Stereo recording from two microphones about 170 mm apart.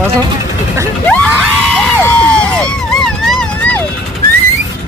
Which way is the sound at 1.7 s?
10° left (ahead or behind).